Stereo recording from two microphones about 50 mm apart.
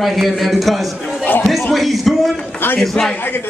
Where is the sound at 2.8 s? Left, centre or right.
Centre.